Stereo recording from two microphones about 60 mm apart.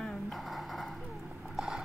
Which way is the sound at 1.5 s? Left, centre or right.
Centre.